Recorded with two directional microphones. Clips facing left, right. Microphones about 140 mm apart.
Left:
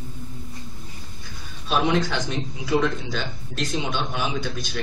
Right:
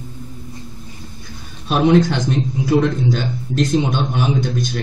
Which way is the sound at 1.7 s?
50° right (ahead or behind).